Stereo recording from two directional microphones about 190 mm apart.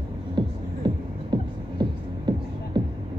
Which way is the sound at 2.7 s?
25° right (ahead or behind).